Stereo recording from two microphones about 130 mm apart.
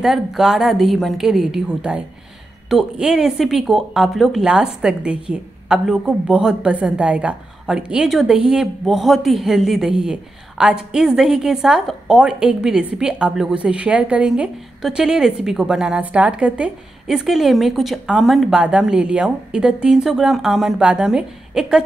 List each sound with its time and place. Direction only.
0.0 s a woman's voice: centre (ahead or behind)